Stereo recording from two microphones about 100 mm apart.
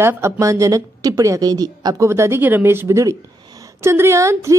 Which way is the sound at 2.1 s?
25° right (ahead or behind).